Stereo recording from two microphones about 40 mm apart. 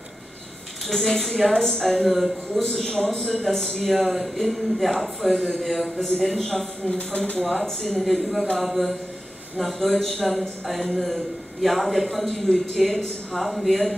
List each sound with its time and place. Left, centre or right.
0.8 s a man's voice: centre
6.9 s speech: left
7.6 s a man's voice: centre
8.0 s a man's voice: centre